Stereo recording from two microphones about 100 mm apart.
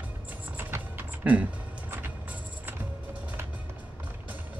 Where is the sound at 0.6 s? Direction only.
20° right (ahead or behind).